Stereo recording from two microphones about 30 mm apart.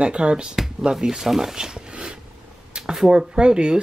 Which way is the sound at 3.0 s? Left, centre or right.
Right.